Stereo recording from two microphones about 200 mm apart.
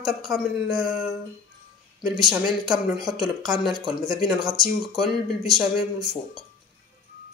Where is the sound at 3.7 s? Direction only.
20° right (ahead or behind).